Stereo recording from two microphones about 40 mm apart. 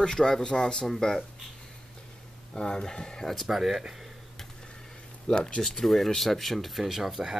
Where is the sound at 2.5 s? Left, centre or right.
Centre.